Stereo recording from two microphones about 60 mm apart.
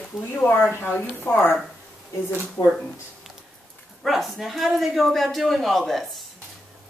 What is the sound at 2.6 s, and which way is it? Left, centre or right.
Speech, left.